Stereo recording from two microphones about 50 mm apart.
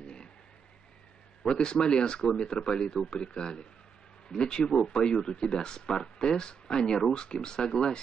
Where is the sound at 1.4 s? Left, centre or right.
Centre.